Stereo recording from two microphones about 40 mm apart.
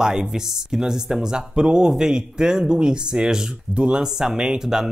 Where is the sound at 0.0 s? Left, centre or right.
Centre.